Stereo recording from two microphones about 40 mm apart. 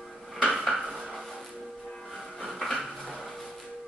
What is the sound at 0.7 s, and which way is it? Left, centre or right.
Dishes, centre.